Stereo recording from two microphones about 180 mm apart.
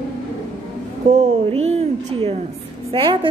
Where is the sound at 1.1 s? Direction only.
35° right (ahead or behind).